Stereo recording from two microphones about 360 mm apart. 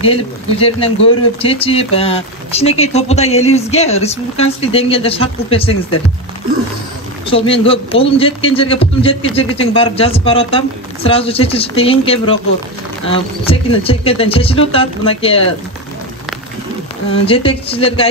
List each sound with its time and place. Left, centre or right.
0.0 s speech: centre
7.2 s speech: centre
17.1 s speech: centre